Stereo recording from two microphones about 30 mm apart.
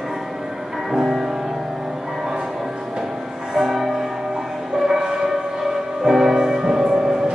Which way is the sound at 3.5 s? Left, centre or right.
Centre.